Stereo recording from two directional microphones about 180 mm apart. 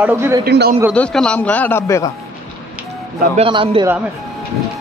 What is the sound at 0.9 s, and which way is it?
A man's voice, 5° left (ahead or behind).